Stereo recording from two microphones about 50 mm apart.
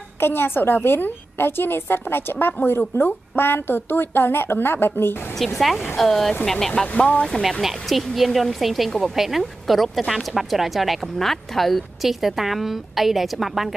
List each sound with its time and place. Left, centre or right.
0.2 s a woman's voice: left
5.3 s speech: centre
6.9 s speech: left
7.6 s speech: centre